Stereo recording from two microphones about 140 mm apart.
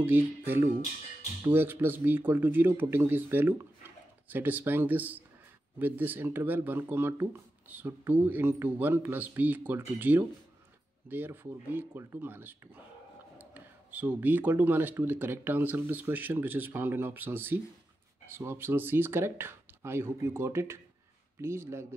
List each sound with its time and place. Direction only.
0.0 s speech: 15° right (ahead or behind)